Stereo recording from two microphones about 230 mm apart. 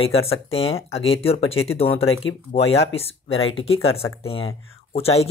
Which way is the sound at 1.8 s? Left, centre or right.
Left.